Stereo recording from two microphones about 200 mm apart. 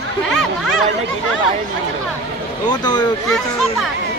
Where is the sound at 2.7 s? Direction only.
20° left (ahead or behind).